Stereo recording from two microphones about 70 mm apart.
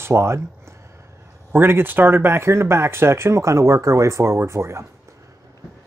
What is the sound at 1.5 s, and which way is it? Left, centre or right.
Speech, right.